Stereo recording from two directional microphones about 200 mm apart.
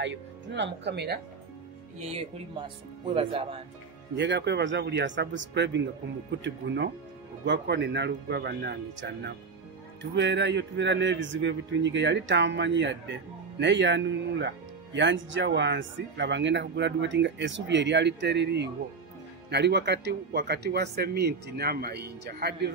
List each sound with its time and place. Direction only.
0.0 s speech: 60° right (ahead or behind)
2.0 s speech: 30° right (ahead or behind)
4.2 s a man's voice: 60° right (ahead or behind)